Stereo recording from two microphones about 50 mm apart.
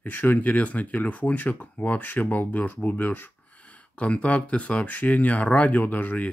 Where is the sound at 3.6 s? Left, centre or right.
Left.